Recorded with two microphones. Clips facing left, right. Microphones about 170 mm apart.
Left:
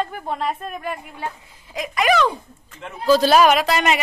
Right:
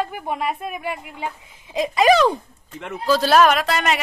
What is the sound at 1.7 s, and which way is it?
Speech, 30° right (ahead or behind).